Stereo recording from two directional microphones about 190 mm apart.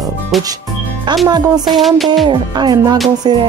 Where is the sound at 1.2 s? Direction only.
20° right (ahead or behind).